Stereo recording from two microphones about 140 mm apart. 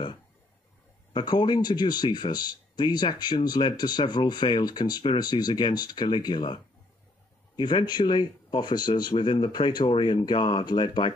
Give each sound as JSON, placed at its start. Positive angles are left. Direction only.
{"t": 1.1, "sound": "speech", "side_deg": 30}